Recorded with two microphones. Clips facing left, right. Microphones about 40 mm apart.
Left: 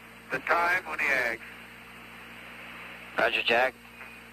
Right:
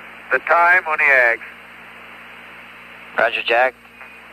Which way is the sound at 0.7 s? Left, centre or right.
Right.